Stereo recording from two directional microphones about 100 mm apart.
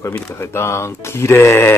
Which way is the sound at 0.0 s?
25° left (ahead or behind).